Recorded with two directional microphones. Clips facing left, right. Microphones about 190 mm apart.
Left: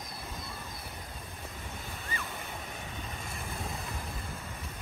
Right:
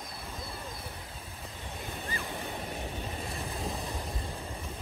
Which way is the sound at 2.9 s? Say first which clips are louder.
Right 4 dB; 35° right (ahead or behind).